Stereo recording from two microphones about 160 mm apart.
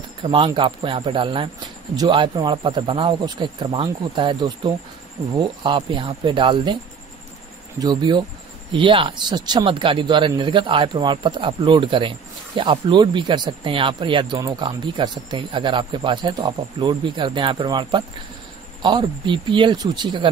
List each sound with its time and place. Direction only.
0.2 s speech: 30° right (ahead or behind)
7.8 s speech: 25° right (ahead or behind)